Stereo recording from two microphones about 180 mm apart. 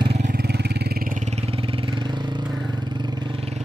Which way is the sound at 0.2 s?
55° right (ahead or behind).